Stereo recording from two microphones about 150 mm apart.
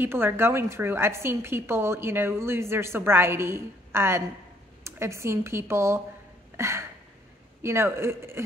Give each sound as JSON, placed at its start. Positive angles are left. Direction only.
{"t": 0.0, "sound": "a woman's voice", "side_deg": -15}
{"t": 6.5, "sound": "a sound", "side_deg": -20}
{"t": 7.6, "sound": "a woman's voice", "side_deg": -15}